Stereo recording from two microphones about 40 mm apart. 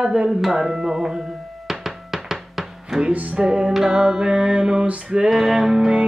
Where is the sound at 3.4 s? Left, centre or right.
Right.